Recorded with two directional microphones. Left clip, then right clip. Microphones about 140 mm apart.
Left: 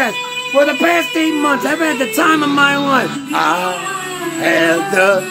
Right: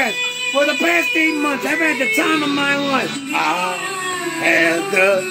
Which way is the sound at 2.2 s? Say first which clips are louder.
Left 5 dB; 25° left (ahead or behind).